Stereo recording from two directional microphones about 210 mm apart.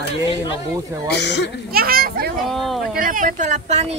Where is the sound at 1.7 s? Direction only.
45° right (ahead or behind).